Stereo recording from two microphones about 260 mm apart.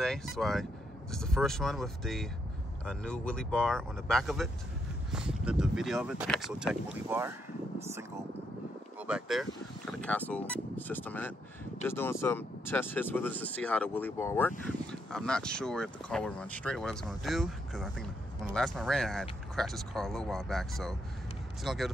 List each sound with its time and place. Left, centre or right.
0.0 s speech: centre
9.0 s speech: centre